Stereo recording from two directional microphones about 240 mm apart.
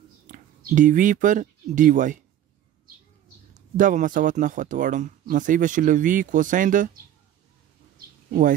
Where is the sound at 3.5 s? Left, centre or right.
Right.